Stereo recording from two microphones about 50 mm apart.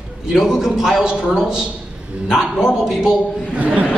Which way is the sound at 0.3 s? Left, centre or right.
Centre.